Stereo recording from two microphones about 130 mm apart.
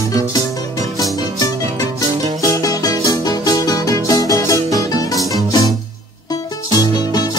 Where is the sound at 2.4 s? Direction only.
25° left (ahead or behind).